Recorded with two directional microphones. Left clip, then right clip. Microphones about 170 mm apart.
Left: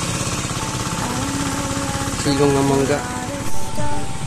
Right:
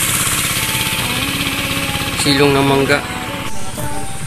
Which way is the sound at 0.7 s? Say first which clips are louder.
Right 6 dB; 45° left (ahead or behind).